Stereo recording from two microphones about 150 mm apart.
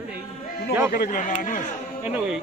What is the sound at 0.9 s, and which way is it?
Speech, 60° left (ahead or behind).